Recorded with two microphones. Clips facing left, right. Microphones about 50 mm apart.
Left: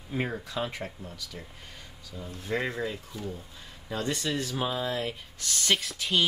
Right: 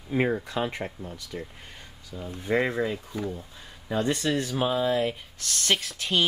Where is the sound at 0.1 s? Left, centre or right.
Right.